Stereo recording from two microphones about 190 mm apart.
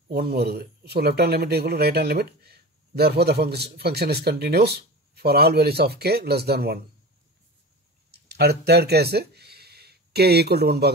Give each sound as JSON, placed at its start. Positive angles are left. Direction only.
{"t": 0.1, "sound": "speech", "side_deg": -55}
{"t": 8.1, "sound": "speech", "side_deg": -60}